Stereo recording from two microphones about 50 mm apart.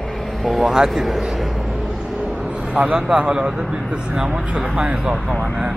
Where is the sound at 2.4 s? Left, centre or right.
Right.